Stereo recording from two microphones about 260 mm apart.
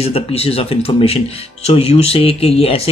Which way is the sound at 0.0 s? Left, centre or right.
Left.